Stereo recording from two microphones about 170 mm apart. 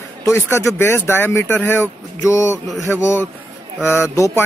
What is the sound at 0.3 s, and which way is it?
Speech, 15° left (ahead or behind).